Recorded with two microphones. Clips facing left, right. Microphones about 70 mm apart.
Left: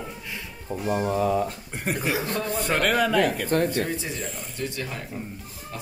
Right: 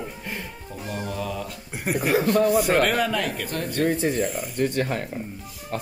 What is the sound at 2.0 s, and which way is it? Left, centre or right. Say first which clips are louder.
Speech: right 8 dB; right.